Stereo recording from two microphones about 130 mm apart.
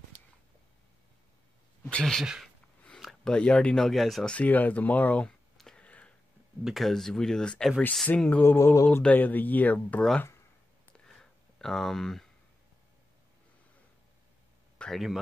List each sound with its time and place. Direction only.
1.9 s speech: 5° left (ahead or behind)
11.1 s a sound: 5° left (ahead or behind)
14.8 s speech: centre (ahead or behind)